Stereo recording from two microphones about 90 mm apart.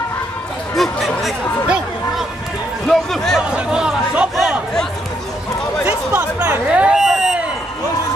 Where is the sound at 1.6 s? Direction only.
5° right (ahead or behind).